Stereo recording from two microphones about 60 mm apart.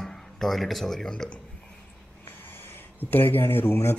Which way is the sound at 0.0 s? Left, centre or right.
Centre.